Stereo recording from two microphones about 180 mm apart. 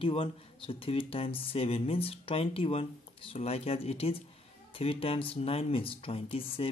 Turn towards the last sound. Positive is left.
turn(degrees=30)  # may be behind; listen again after turning